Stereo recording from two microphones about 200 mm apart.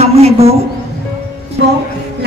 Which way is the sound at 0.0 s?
30° right (ahead or behind).